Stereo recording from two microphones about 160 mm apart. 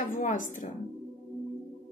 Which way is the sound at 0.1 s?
55° left (ahead or behind).